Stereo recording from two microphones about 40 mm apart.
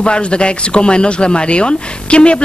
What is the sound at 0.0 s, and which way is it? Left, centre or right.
Speech, left.